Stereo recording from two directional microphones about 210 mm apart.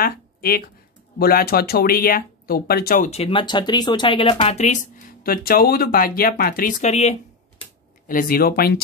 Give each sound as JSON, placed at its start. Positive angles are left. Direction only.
{"t": 0.0, "sound": "speech", "side_deg": 45}
{"t": 3.1, "sound": "speech", "side_deg": 25}
{"t": 8.1, "sound": "speech", "side_deg": 40}